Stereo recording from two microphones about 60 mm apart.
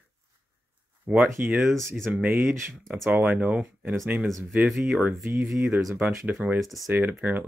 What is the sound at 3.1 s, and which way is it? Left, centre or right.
Speech, centre.